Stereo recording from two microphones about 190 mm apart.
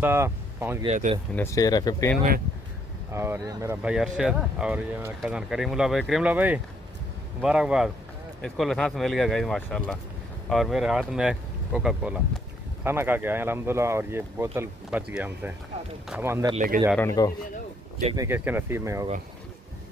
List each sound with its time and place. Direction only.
0.0 s speech: 10° right (ahead or behind)
0.8 s speech: 35° right (ahead or behind)
1.3 s speech: 15° left (ahead or behind)
3.1 s speech: 15° right (ahead or behind)
16.5 s speech: 50° right (ahead or behind)
17.2 s a man's voice: 20° left (ahead or behind)
18.1 s speech: 15° right (ahead or behind)